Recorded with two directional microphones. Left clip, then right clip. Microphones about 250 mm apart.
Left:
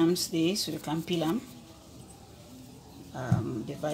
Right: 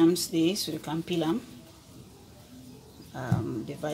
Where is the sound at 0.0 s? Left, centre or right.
Centre.